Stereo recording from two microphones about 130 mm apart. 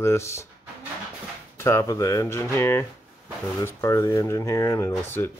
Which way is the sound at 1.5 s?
20° left (ahead or behind).